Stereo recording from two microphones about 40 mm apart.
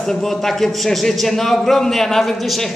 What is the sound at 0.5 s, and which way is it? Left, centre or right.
A man's voice, centre.